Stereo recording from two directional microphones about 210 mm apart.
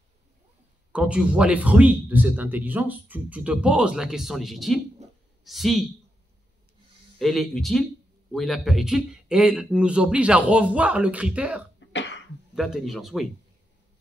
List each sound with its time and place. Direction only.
0.9 s speech: 5° right (ahead or behind)
7.2 s speech: centre (ahead or behind)
11.9 s cough: 60° left (ahead or behind)
12.5 s speech: centre (ahead or behind)